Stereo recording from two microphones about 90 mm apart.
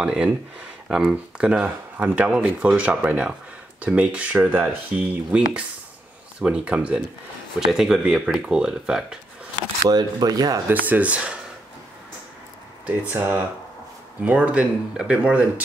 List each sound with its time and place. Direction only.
0.0 s speech: 10° right (ahead or behind)
9.8 s speech: 50° right (ahead or behind)
10.7 s speech: 15° right (ahead or behind)
13.1 s speech: 25° right (ahead or behind)
14.2 s speech: 15° right (ahead or behind)